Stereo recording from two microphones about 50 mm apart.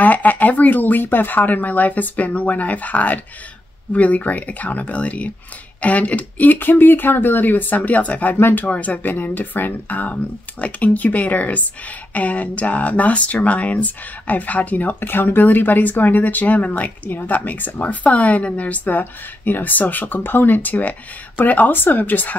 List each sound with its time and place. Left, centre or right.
0.0 s speech: left
8.4 s speech: left
8.6 s speech: left